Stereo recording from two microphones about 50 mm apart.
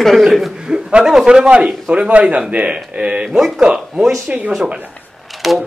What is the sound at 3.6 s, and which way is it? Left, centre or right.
A man's voice, centre.